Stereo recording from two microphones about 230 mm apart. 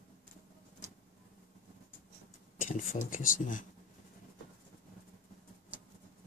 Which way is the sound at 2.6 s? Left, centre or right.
Left.